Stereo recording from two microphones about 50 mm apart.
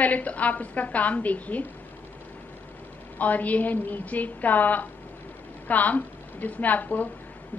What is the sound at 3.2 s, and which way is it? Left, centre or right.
A woman's voice, left.